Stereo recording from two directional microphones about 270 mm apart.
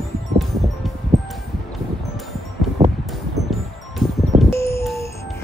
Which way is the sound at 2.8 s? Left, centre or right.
Right.